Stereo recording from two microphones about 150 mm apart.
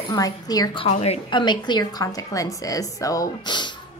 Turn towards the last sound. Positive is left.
turn(degrees=30)  # may be behind; listen again after turning